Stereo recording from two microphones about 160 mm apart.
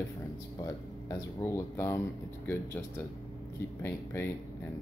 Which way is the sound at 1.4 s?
15° left (ahead or behind).